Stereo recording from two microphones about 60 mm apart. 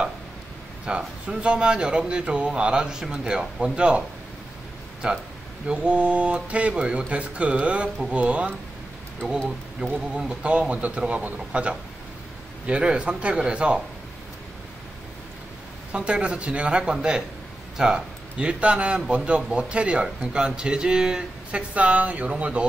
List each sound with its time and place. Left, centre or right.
0.8 s a man's voice: centre
5.0 s a man's voice: centre
9.8 s a man's voice: centre
15.9 s a man's voice: centre